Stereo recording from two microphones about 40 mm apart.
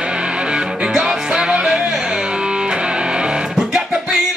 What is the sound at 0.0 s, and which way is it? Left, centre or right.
Music, right.